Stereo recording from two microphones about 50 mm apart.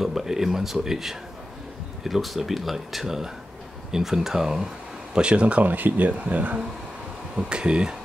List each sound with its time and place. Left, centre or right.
0.0 s speech: centre
5.1 s speech: right
7.4 s speech: centre